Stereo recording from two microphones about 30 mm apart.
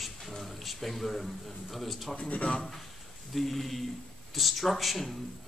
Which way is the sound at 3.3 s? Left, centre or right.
Centre.